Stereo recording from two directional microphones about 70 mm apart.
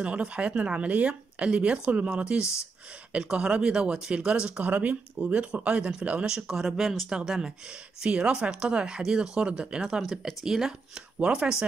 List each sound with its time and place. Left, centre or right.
0.0 s speech: centre